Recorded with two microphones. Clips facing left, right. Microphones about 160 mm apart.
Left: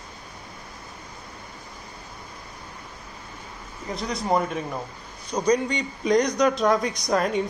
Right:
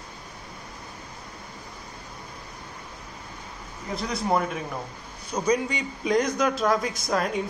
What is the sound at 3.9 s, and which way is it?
A man's voice, centre (ahead or behind).